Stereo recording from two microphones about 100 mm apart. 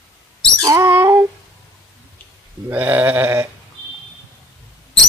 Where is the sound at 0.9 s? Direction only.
25° right (ahead or behind).